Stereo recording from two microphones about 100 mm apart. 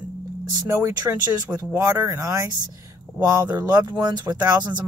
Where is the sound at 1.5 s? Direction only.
15° right (ahead or behind).